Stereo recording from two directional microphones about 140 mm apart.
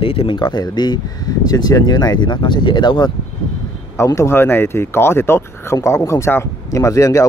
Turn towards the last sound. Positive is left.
turn(degrees=25)  # may be behind; listen again after turning